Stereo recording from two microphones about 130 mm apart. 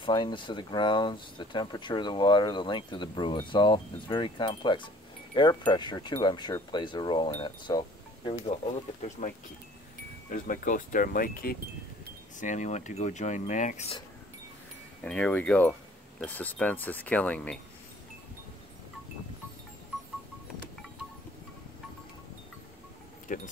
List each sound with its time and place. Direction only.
0.0 s speech: 35° left (ahead or behind)
10.3 s speech: 90° left
12.4 s speech: 70° left (ahead or behind)
15.0 s speech: 10° left (ahead or behind)
23.2 s speech: 75° left (ahead or behind)